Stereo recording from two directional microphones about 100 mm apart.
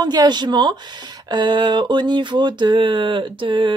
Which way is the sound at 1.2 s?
50° right (ahead or behind).